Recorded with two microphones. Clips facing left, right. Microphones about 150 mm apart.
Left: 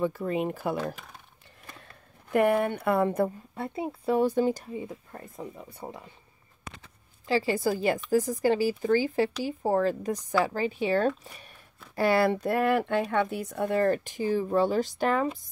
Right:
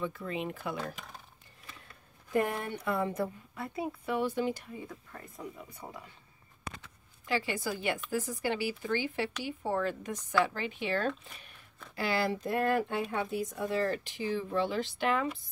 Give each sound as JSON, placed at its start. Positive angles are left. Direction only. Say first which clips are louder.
{"t": 0.0, "sound": "a woman's voice", "louder": "left 8 dB", "side_deg": 40}
{"t": 2.2, "sound": "speech", "louder": "left 8 dB", "side_deg": 65}
{"t": 3.5, "sound": "a woman's voice", "louder": "left 4 dB", "side_deg": 25}
{"t": 4.4, "sound": "a woman's voice", "louder": "left 7 dB", "side_deg": 40}
{"t": 4.8, "sound": "a woman's voice", "louder": "left 5 dB", "side_deg": 30}
{"t": 11.9, "sound": "a woman's voice", "louder": "left 8 dB", "side_deg": 50}